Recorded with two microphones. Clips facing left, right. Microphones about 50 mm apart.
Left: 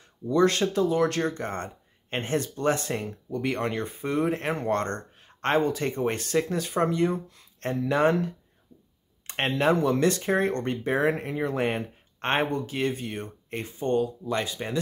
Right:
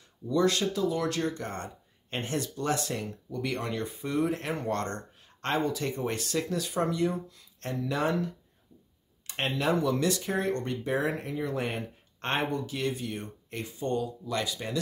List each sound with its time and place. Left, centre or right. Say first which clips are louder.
0.3 s speech: left 4 dB; left
9.3 s speech: left 4 dB; left